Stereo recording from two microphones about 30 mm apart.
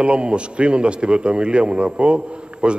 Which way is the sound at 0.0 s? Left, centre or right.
Right.